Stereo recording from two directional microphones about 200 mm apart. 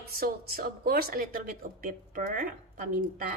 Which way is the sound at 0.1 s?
50° right (ahead or behind).